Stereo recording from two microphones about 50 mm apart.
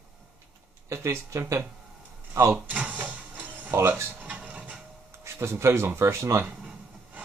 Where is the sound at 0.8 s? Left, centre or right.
Right.